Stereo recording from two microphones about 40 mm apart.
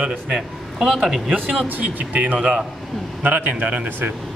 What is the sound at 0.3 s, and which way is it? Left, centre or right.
A man's voice, centre.